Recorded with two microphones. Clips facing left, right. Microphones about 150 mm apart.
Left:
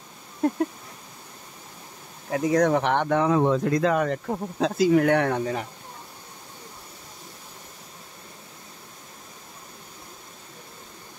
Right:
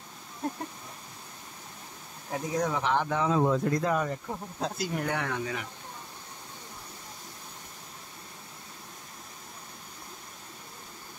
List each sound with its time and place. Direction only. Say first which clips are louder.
0.4 s speech: left 10 dB; 75° left (ahead or behind)
2.3 s speech: left 9 dB; 75° left (ahead or behind)
5.3 s speech: left 7 dB; 40° left (ahead or behind)